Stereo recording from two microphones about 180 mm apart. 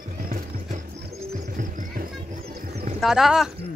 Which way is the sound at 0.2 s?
45° right (ahead or behind).